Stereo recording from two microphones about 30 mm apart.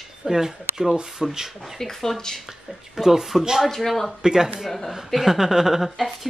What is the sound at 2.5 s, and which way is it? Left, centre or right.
Speech, centre.